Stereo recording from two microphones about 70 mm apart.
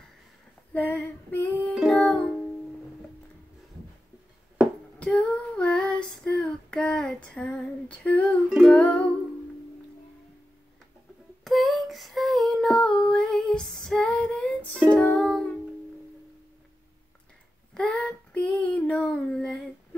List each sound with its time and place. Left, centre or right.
0.7 s music: left
4.9 s female singing: centre
8.6 s music: centre
11.4 s child singing: centre
17.7 s child singing: centre